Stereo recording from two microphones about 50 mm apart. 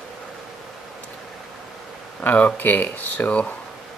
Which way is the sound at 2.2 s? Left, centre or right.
Left.